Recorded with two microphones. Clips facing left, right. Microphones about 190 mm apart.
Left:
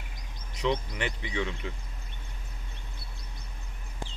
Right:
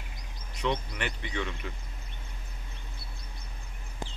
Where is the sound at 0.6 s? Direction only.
20° left (ahead or behind).